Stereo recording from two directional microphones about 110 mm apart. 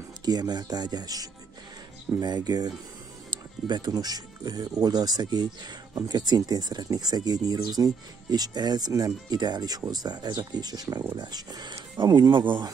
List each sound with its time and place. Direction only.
0.2 s speech: 40° right (ahead or behind)